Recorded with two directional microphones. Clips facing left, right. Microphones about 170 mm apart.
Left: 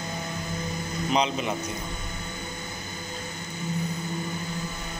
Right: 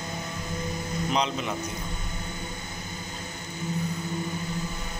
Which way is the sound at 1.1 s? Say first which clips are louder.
Left 3 dB; centre (ahead or behind).